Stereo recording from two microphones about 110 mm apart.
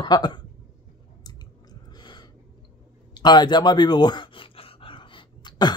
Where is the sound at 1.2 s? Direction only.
35° left (ahead or behind).